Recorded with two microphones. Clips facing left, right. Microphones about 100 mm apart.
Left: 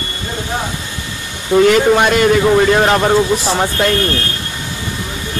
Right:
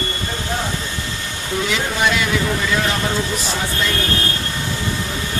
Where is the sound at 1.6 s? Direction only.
55° left (ahead or behind).